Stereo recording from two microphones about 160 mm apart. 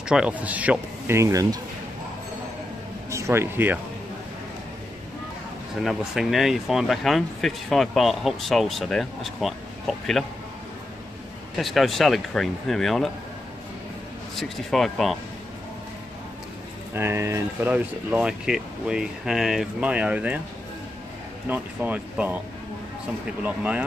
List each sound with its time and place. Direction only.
0.1 s speech: 5° right (ahead or behind)
3.1 s speech: 20° right (ahead or behind)
5.9 s speech: centre (ahead or behind)
11.5 s speech: centre (ahead or behind)
14.3 s speech: centre (ahead or behind)
16.9 s speech: 15° right (ahead or behind)
21.5 s speech: 10° right (ahead or behind)
23.4 s speech: 10° right (ahead or behind)